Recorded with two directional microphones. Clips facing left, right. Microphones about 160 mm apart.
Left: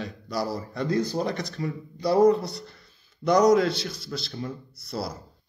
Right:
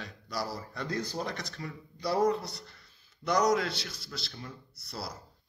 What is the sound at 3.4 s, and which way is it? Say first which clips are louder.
Speech: left 8 dB; 25° left (ahead or behind).